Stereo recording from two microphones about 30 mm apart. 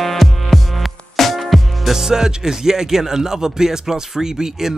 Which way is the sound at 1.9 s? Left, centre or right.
Centre.